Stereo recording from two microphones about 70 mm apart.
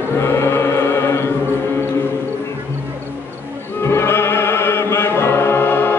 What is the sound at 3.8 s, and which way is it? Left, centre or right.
Music, left.